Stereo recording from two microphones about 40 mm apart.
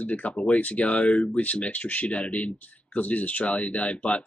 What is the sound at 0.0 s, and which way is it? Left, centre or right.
Speech, left.